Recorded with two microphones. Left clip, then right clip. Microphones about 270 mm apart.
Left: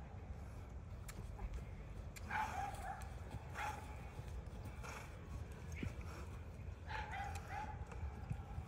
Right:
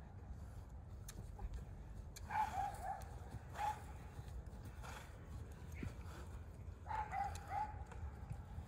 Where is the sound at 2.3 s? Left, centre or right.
Right.